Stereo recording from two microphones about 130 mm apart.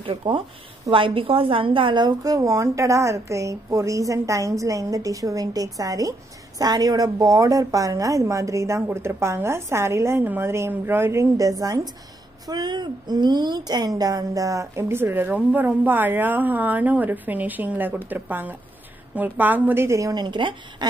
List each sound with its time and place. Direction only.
0.0 s a woman's voice: 40° right (ahead or behind)